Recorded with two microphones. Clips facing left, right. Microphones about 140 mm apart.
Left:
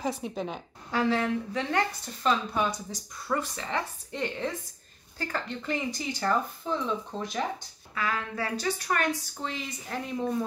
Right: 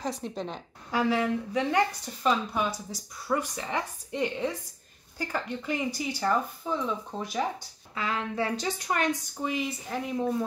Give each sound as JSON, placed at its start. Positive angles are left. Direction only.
{"t": 0.0, "sound": "a woman's voice", "side_deg": 5}
{"t": 0.9, "sound": "speech", "side_deg": -10}
{"t": 7.9, "sound": "a woman's voice", "side_deg": -25}